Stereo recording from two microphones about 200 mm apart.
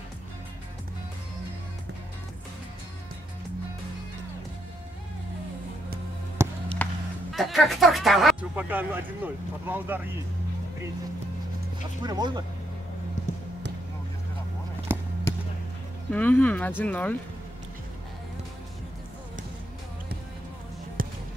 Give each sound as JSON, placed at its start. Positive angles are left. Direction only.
{"t": 6.4, "sound": "basketball bounce", "side_deg": -15}
{"t": 6.8, "sound": "music", "side_deg": 5}
{"t": 7.3, "sound": "speech", "side_deg": 0}
{"t": 12.0, "sound": "speech", "side_deg": -20}
{"t": 14.9, "sound": "basketball bounce", "side_deg": -10}
{"t": 16.1, "sound": "speech", "side_deg": 5}
{"t": 21.0, "sound": "basketball bounce", "side_deg": -45}